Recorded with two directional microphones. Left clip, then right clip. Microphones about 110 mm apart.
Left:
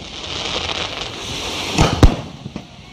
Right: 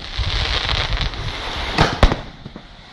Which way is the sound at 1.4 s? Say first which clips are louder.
Left 2 dB; 25° left (ahead or behind).